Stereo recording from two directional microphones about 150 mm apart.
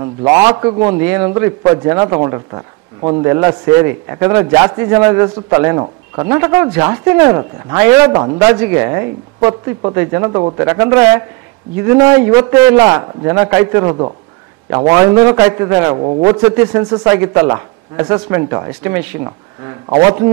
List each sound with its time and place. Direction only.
0.0 s a man's voice: 20° right (ahead or behind)
19.2 s speech: 25° right (ahead or behind)